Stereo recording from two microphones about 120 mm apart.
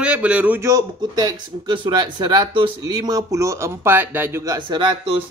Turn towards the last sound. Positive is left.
turn(degrees=-40)  # may be behind; listen again after turning